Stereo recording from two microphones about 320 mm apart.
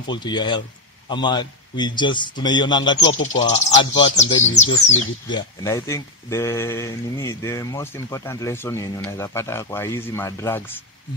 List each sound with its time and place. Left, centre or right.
0.0 s speech: centre